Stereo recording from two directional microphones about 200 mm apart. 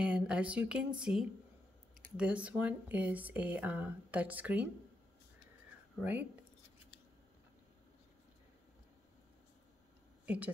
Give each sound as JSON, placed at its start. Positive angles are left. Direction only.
{"t": 0.0, "sound": "speech", "side_deg": -5}
{"t": 10.2, "sound": "a woman's voice", "side_deg": -5}